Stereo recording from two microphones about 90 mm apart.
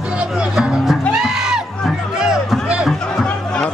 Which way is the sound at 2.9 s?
5° left (ahead or behind).